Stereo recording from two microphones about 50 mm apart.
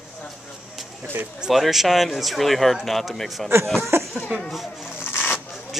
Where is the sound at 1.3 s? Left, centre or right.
Centre.